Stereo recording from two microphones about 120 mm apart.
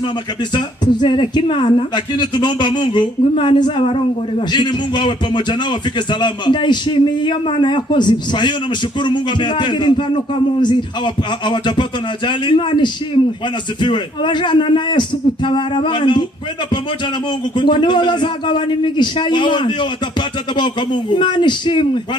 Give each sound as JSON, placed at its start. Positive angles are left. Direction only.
{"t": 0.6, "sound": "a man's voice", "side_deg": 40}
{"t": 17.6, "sound": "a man's voice", "side_deg": 40}